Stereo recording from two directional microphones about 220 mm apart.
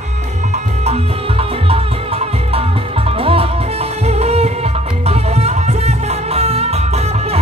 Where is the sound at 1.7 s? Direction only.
25° right (ahead or behind).